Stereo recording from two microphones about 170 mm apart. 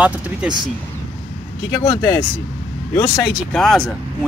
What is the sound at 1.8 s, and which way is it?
Speech, 20° left (ahead or behind).